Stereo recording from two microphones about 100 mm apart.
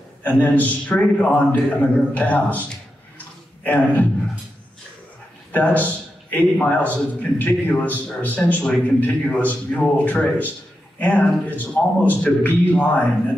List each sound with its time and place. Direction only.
0.2 s a man's voice: 15° left (ahead or behind)
5.5 s a man's voice: 15° left (ahead or behind)